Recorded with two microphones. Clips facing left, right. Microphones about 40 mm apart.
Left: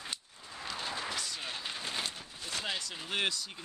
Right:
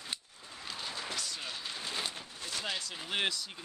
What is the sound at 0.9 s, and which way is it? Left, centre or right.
Vehicle, left.